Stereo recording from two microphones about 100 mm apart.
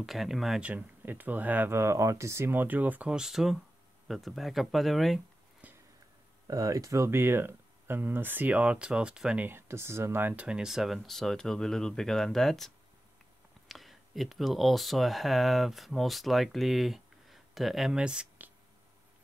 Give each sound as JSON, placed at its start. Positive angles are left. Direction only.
{"t": 0.0, "sound": "speech", "side_deg": 0}
{"t": 0.6, "sound": "speech", "side_deg": -15}
{"t": 5.6, "sound": "a sound", "side_deg": -15}
{"t": 6.4, "sound": "speech", "side_deg": -35}
{"t": 9.5, "sound": "speech", "side_deg": -25}